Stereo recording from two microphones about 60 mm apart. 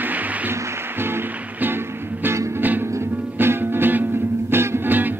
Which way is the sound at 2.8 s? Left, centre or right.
Right.